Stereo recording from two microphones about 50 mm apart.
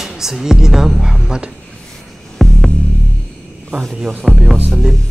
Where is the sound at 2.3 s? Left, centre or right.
Centre.